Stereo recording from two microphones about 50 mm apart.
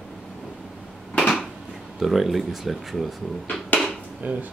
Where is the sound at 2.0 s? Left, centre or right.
Centre.